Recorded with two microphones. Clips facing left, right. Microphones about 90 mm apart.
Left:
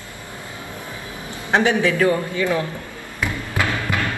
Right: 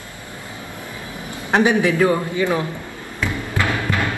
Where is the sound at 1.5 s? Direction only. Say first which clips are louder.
Right 1 dB; 20° right (ahead or behind).